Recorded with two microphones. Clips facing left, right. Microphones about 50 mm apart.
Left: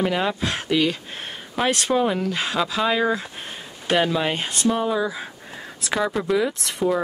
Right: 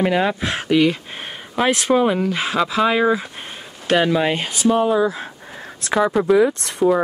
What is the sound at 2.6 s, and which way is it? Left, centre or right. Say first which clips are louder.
Speech: right 5 dB; centre.